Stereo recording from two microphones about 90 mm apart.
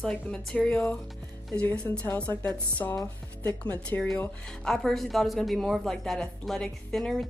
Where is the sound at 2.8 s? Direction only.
35° left (ahead or behind).